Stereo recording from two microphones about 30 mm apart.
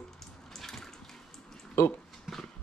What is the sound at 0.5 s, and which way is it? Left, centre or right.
Water, centre.